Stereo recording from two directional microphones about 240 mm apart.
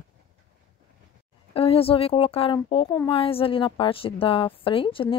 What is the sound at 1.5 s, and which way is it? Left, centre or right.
A woman's voice, left.